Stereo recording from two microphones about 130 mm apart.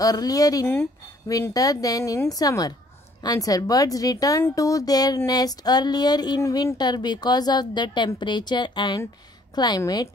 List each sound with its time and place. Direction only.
0.0 s a woman's voice: 30° left (ahead or behind)